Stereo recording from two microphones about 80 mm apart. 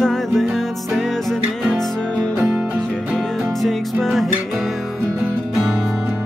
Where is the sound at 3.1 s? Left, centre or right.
Centre.